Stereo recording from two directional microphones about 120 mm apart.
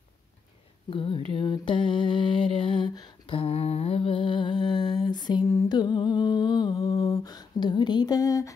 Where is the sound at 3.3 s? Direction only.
55° left (ahead or behind); by 5.4 s 35° left (ahead or behind).